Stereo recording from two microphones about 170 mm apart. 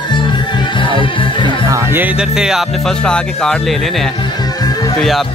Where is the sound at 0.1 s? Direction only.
30° left (ahead or behind).